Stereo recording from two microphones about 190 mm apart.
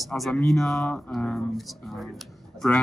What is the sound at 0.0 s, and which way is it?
Speech, centre (ahead or behind).